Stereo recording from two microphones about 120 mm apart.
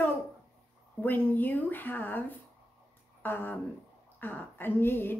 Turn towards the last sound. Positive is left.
turn(degrees=20)  # may be behind; listen again after turning